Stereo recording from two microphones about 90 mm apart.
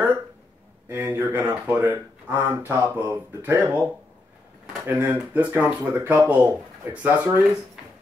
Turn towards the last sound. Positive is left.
turn(degrees=-20)  # may be behind; listen again after turning